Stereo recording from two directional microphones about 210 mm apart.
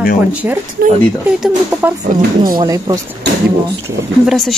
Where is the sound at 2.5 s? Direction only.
20° right (ahead or behind).